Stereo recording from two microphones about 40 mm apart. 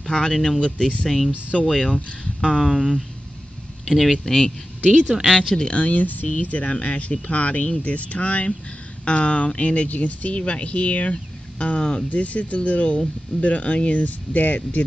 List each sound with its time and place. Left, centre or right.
0.0 s speech: centre
1.5 s speech: centre
2.2 s speech: centre
3.8 s speech: centre
4.2 s speech: centre
5.0 s speech: centre
5.7 s speech: left
12.1 s speech: left